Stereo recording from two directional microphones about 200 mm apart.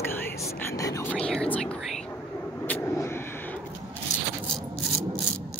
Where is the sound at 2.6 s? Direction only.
10° left (ahead or behind).